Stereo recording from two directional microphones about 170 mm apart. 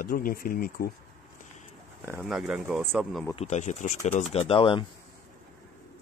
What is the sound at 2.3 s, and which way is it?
Speech, 5° right (ahead or behind).